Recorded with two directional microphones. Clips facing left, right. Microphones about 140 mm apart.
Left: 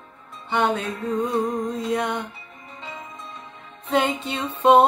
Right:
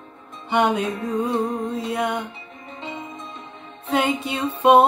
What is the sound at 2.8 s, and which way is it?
Music, 25° right (ahead or behind).